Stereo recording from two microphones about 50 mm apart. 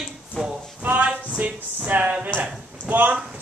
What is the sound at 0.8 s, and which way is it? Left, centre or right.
Speech, right.